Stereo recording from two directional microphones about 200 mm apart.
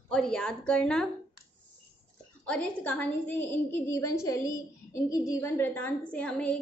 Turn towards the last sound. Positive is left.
turn(degrees=5)  # may be behind; listen again after turning